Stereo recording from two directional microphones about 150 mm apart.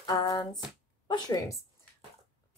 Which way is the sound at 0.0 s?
25° left (ahead or behind).